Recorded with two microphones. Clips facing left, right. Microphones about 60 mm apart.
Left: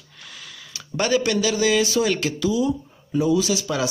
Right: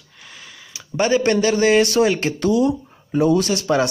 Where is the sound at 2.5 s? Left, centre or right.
Right.